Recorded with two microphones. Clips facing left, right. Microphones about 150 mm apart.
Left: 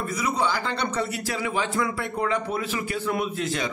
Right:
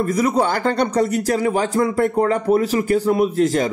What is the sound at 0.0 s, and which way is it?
Speech, 45° right (ahead or behind).